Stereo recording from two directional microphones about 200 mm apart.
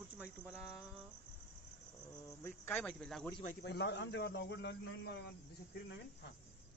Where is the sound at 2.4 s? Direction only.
10° left (ahead or behind).